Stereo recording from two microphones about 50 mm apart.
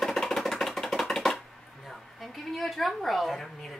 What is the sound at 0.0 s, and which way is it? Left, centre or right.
Music, centre.